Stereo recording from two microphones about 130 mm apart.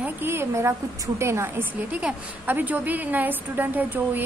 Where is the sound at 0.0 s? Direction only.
15° right (ahead or behind).